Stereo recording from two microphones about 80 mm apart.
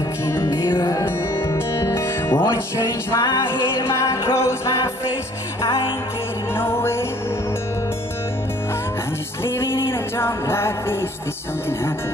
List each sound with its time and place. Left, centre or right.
0.3 s music: left
0.7 s music: left
0.9 s music: left
6.5 s music: left
9.4 s music: left